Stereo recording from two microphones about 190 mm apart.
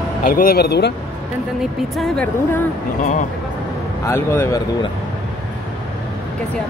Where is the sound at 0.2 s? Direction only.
50° left (ahead or behind).